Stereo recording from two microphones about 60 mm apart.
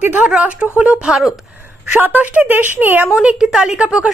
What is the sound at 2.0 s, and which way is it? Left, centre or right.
A woman's voice, right.